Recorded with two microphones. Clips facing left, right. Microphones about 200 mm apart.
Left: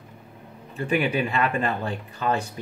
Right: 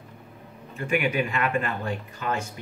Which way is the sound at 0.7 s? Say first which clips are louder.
Left 1 dB; 35° left (ahead or behind).